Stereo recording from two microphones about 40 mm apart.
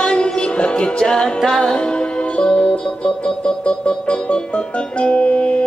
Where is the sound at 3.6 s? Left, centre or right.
Left.